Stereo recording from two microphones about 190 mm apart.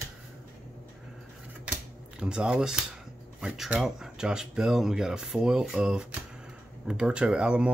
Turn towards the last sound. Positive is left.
turn(degrees=-5)  # may be behind; listen again after turning